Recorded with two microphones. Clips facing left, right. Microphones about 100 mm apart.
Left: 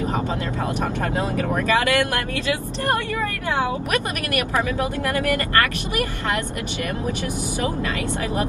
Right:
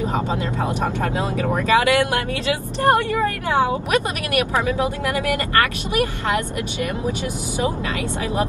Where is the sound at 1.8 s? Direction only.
15° right (ahead or behind).